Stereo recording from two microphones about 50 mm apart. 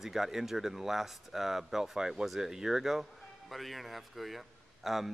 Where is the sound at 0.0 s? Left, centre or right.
Centre.